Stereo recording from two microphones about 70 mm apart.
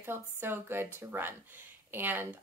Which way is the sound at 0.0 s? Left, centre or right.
Right.